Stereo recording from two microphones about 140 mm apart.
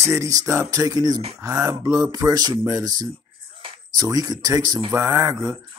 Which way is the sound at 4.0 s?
25° right (ahead or behind).